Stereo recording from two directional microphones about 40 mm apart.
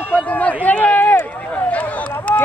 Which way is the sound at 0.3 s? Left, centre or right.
Left.